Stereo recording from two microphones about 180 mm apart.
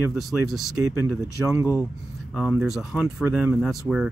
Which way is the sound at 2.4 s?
Centre (ahead or behind).